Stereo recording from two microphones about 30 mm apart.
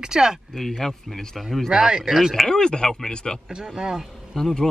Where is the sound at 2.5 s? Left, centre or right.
Left.